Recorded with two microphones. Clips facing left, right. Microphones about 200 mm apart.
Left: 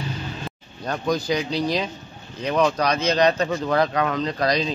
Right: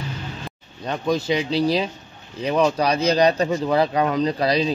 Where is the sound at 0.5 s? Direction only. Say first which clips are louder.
Right 2 dB; centre (ahead or behind).